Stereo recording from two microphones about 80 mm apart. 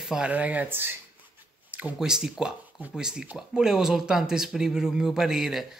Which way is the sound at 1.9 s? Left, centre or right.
Centre.